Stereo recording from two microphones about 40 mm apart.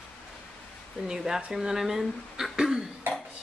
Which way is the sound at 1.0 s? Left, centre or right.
Centre.